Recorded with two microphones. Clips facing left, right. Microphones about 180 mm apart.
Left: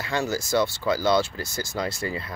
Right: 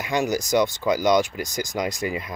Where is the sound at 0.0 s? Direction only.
15° right (ahead or behind).